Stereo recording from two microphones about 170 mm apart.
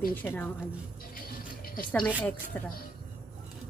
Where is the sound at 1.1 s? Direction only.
55° left (ahead or behind).